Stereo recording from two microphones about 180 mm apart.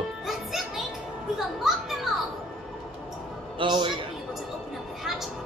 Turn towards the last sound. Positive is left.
turn(degrees=-25)  # may be behind; listen again after turning